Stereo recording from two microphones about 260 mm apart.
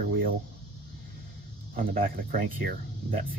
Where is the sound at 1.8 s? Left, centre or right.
Right.